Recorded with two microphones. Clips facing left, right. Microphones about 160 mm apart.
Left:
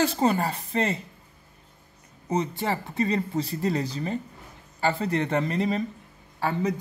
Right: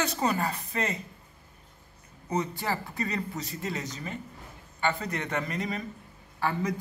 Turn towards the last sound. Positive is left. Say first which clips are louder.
# left 3 dB
turn(degrees=25)  # may be behind; listen again after turning